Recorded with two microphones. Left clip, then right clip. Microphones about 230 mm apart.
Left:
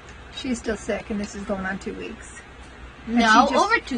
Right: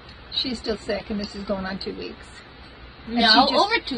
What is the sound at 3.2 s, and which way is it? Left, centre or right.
Speech, centre.